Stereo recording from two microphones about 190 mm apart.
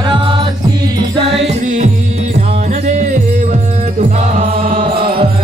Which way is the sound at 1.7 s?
35° right (ahead or behind).